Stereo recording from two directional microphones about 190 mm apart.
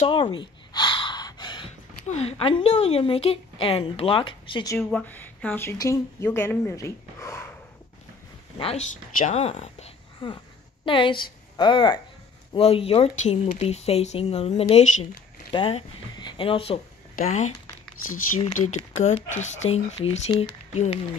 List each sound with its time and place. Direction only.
0.0 s a sound: 25° left (ahead or behind)
2.0 s a woman's voice: 35° left (ahead or behind)
4.7 s speech: 10° left (ahead or behind)
8.5 s a woman's voice: 35° left (ahead or behind)
18.0 s speech: 90° left
18.4 s speech: 35° left (ahead or behind)